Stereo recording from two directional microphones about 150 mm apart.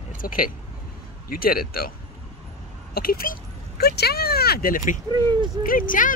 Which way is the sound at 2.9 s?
80° left.